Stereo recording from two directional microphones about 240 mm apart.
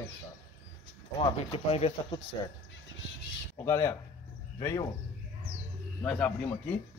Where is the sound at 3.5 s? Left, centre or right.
Centre.